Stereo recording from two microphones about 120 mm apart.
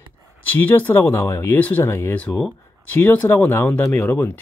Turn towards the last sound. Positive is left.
turn(degrees=15)  # may be behind; listen again after turning